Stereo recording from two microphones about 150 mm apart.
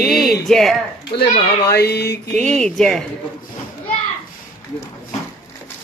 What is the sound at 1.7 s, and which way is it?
Speech, 90° left.